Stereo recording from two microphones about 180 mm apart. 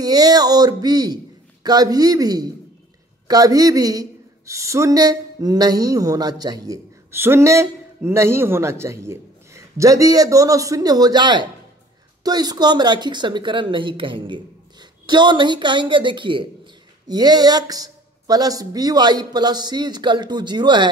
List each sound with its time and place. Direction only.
0.0 s a woman's voice: 20° right (ahead or behind)